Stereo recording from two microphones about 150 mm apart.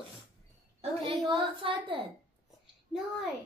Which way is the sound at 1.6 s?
35° right (ahead or behind).